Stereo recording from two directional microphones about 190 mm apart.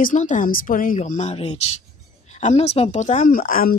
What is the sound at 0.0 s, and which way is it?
A woman's voice, 40° left (ahead or behind).